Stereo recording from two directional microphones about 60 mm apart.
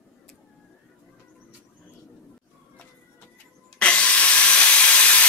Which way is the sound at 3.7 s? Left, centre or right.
Left.